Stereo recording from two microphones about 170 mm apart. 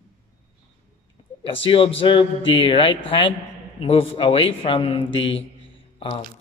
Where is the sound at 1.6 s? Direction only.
30° left (ahead or behind).